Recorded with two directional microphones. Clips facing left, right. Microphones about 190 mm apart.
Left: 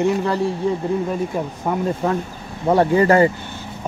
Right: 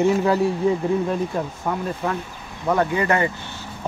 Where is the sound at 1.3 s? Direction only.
20° left (ahead or behind).